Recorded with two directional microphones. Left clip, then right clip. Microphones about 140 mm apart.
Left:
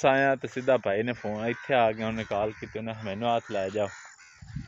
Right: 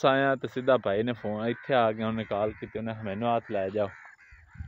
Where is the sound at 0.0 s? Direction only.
35° right (ahead or behind).